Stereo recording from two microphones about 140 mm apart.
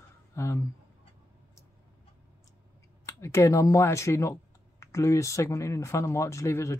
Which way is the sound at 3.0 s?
20° left (ahead or behind).